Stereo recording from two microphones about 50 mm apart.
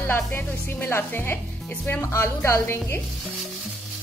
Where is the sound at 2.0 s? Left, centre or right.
Left.